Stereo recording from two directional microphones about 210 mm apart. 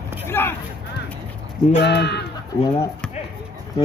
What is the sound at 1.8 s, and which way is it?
Speech, 55° left (ahead or behind).